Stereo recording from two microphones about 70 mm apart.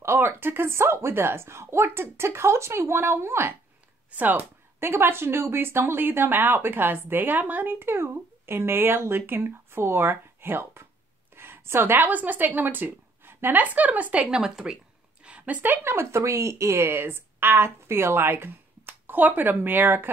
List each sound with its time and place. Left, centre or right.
0.0 s a woman's voice: right; by 14.4 s centre
14.4 s a woman's voice: centre
15.2 s a woman's voice: right
15.8 s speech: right